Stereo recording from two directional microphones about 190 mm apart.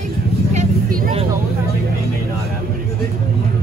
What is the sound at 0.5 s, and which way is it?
Vehicle, 35° right (ahead or behind).